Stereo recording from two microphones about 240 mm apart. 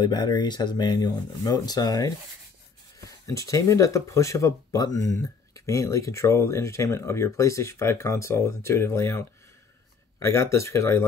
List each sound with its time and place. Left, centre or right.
0.0 s speech: centre